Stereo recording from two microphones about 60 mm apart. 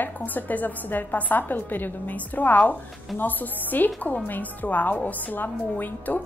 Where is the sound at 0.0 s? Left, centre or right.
Left.